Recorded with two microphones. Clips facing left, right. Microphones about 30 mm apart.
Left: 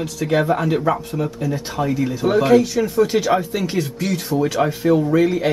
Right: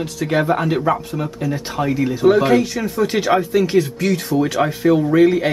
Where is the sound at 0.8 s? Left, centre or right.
Centre.